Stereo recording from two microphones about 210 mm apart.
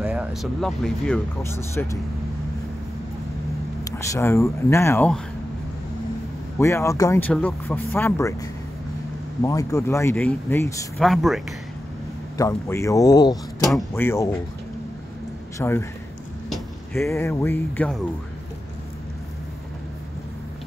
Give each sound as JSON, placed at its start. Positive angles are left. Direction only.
{"t": 0.0, "sound": "speech", "side_deg": -5}
{"t": 3.8, "sound": "speech", "side_deg": 15}
{"t": 6.6, "sound": "speech", "side_deg": 15}
{"t": 11.0, "sound": "speech", "side_deg": 0}
{"t": 12.4, "sound": "speech", "side_deg": 15}
{"t": 15.5, "sound": "speech", "side_deg": 10}
{"t": 16.9, "sound": "speech", "side_deg": 15}